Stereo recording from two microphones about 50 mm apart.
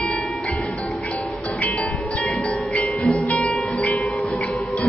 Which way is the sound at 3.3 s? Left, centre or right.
Left.